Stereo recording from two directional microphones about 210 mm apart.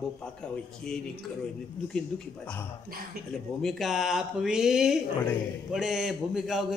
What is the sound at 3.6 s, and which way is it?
A man's voice, centre (ahead or behind).